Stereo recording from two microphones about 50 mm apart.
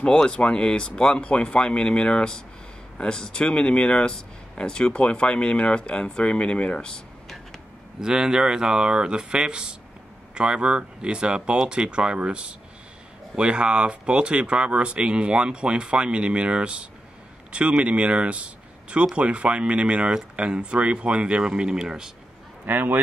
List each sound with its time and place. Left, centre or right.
0.0 s speech: centre
8.0 s speech: centre
22.7 s a man's voice: right